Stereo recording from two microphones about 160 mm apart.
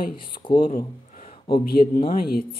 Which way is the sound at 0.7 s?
55° left (ahead or behind).